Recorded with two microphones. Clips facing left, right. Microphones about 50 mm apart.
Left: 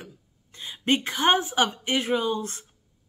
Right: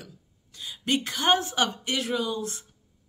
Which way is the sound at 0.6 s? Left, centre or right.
Left.